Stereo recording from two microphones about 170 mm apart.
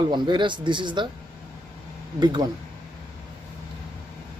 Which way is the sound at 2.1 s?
25° right (ahead or behind).